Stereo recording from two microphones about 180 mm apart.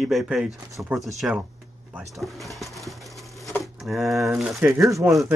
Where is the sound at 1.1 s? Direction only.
Centre (ahead or behind).